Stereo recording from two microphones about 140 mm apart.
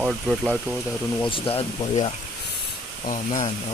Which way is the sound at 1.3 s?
40° left (ahead or behind).